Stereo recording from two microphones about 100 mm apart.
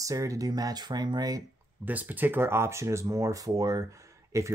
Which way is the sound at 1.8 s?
15° right (ahead or behind).